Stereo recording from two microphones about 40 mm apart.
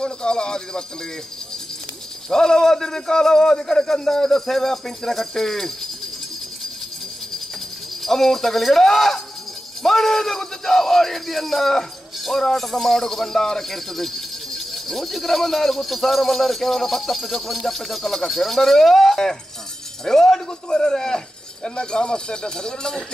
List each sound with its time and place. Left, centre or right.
0.0 s speech: left
2.2 s a man's voice: centre
8.0 s a man's voice: centre